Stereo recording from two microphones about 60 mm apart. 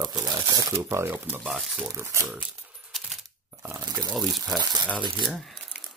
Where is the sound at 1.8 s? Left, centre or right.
Right.